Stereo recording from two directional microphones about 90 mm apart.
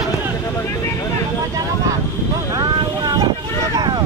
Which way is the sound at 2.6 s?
45° right (ahead or behind).